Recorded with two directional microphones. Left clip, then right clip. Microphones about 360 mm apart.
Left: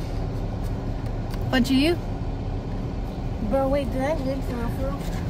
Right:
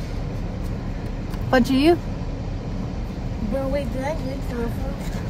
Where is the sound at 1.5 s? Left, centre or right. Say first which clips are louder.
Right 4 dB; centre.